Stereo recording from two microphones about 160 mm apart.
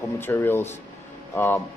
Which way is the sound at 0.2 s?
15° left (ahead or behind).